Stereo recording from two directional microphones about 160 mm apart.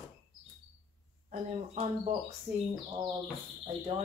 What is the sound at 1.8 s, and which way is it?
Speech, 40° right (ahead or behind).